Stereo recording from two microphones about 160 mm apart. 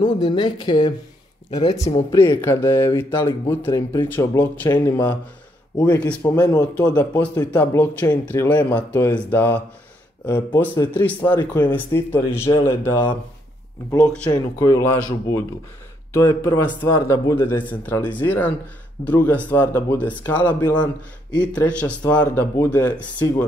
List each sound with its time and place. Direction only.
0.0 s speech: 30° left (ahead or behind)
1.8 s speech: 40° left (ahead or behind)
2.0 s speech: 15° left (ahead or behind)
5.8 s speech: 10° left (ahead or behind)
10.6 s speech: 10° left (ahead or behind)
14.3 s speech: 20° left (ahead or behind)
17.6 s speech: 10° left (ahead or behind)
20.6 s speech: 25° left (ahead or behind)
21.4 s speech: 10° left (ahead or behind)